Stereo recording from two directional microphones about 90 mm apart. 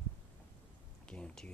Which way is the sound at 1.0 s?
10° left (ahead or behind).